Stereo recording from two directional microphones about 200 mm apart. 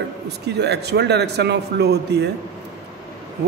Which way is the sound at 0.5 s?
55° right (ahead or behind).